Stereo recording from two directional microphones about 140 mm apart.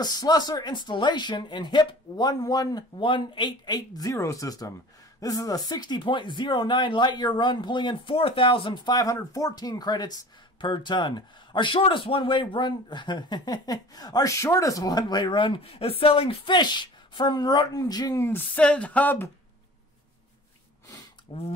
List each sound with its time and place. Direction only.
0.0 s speech: 30° left (ahead or behind)
21.3 s speech: 35° left (ahead or behind)